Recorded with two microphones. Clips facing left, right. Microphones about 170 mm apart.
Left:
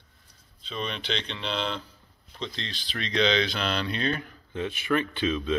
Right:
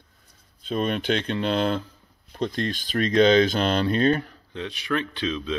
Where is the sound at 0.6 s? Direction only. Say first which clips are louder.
Right 9 dB; 50° right (ahead or behind).